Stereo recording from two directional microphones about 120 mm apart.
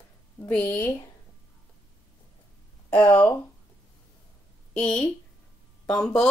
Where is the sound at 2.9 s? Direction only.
10° left (ahead or behind).